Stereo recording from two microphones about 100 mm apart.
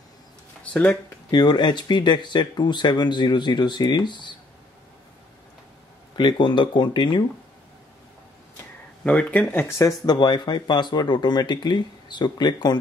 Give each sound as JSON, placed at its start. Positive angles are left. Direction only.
{"t": 1.3, "sound": "speech", "side_deg": 50}
{"t": 6.1, "sound": "speech", "side_deg": 50}
{"t": 9.0, "sound": "speech", "side_deg": 15}
{"t": 10.1, "sound": "speech", "side_deg": 50}